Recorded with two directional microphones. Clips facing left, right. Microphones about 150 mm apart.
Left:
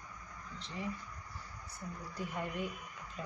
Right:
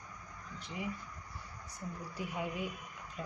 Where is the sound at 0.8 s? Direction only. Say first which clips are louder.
Even; 10° right (ahead or behind).